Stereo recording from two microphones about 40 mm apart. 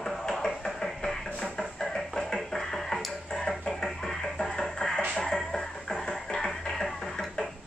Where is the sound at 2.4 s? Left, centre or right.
Centre.